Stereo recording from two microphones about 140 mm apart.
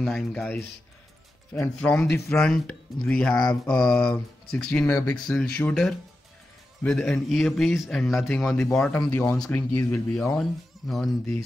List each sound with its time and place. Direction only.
0.0 s a man's voice: 5° left (ahead or behind)
4.8 s speech: 20° left (ahead or behind)
5.1 s a man's voice: 5° left (ahead or behind)